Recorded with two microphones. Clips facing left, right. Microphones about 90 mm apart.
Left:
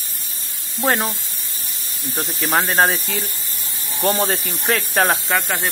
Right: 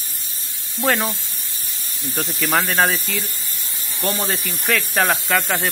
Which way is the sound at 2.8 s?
35° left (ahead or behind).